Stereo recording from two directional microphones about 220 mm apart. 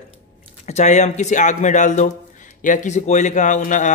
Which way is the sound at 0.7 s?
30° left (ahead or behind).